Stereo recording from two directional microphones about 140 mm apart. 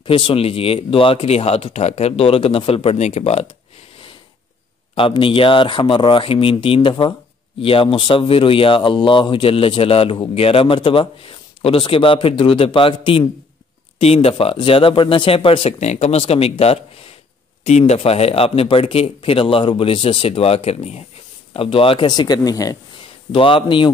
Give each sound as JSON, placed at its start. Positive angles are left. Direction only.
{"t": 0.0, "sound": "speech", "side_deg": 40}
{"t": 4.9, "sound": "speech", "side_deg": 40}
{"t": 23.3, "sound": "speech", "side_deg": 40}